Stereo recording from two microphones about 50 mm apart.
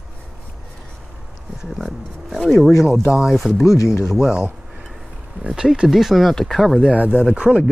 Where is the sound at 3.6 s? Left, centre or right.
Left.